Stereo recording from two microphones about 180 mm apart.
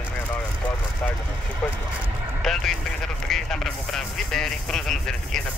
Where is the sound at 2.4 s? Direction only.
Centre (ahead or behind).